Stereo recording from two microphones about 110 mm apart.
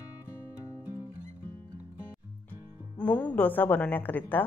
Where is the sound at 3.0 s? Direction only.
15° left (ahead or behind).